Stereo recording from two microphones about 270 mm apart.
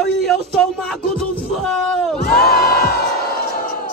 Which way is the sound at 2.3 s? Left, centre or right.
Left.